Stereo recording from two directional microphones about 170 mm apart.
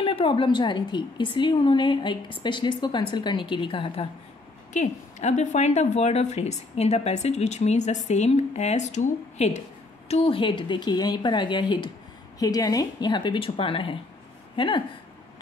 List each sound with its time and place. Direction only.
0.0 s a woman's voice: 30° left (ahead or behind)
4.7 s a woman's voice: 45° left (ahead or behind)